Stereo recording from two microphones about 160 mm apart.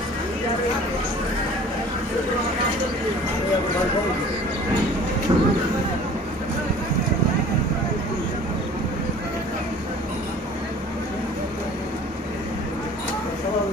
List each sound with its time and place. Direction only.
5.3 s speech: 25° right (ahead or behind)